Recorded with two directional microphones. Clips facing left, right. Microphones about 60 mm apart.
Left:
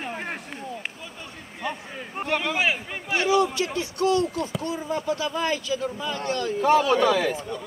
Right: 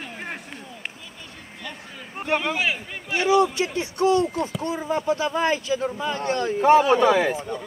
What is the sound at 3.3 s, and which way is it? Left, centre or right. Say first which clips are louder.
Speech: right 4 dB; right.